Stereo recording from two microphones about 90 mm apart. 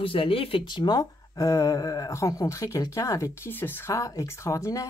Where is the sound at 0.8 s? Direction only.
50° left (ahead or behind).